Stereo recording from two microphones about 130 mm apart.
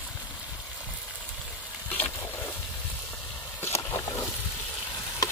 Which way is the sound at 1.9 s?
15° left (ahead or behind).